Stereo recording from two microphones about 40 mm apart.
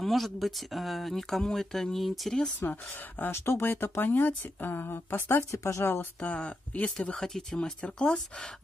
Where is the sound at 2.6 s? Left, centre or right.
Left.